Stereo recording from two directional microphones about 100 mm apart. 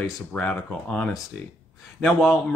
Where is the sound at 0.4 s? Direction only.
10° left (ahead or behind).